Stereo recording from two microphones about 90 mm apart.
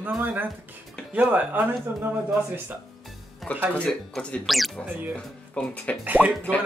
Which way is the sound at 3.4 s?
Centre (ahead or behind).